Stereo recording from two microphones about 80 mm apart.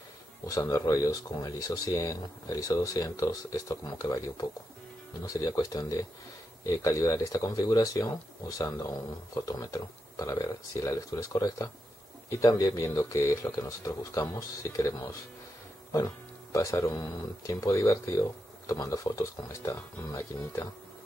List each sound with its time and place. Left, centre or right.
0.5 s speech: left
5.2 s speech: left
16.5 s speech: left